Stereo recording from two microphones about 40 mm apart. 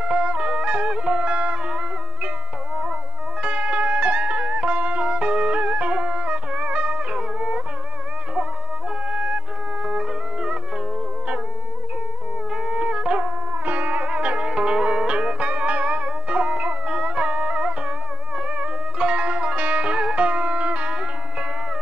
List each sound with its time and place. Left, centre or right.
0.0 s music: right
3.4 s music: right
9.1 s music: right
12.5 s a sound: centre
12.8 s wind instrument: right
13.5 s music: right